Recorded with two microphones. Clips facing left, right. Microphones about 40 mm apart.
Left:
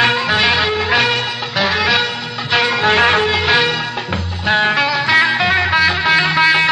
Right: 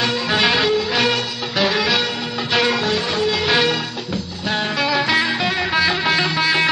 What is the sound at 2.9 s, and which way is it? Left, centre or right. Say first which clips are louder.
Music: left 8 dB; left.